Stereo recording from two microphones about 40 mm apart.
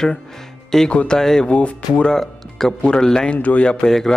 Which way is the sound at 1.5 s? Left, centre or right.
Left.